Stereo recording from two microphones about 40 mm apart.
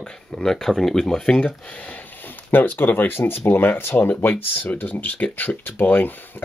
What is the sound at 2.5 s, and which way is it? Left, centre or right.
Speech, left.